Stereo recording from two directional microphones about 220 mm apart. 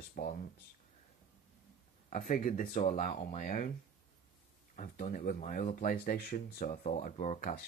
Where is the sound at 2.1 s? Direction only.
35° left (ahead or behind).